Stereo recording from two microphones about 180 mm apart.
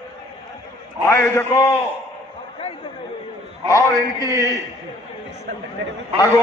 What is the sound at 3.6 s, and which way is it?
Speech, 20° left (ahead or behind).